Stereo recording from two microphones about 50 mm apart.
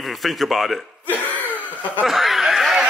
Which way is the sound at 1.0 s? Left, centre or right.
Left.